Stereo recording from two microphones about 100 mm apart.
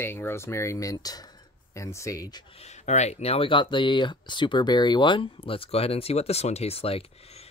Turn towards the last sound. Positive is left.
turn(degrees=85)